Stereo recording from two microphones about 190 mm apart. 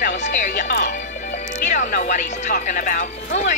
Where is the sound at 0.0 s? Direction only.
40° left (ahead or behind).